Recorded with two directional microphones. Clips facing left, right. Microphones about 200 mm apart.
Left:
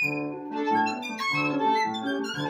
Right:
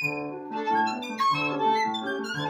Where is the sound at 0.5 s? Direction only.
25° left (ahead or behind).